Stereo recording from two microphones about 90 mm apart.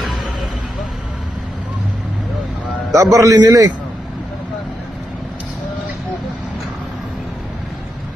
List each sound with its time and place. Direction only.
2.9 s a man's voice: 40° right (ahead or behind)